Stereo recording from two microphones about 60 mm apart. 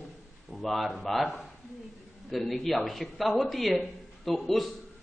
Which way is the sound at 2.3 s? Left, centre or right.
Centre.